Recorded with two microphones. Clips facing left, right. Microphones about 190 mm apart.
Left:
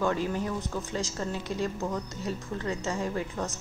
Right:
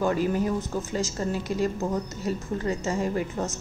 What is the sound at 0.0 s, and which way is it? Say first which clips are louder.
A woman's voice: right 4 dB; 5° right (ahead or behind).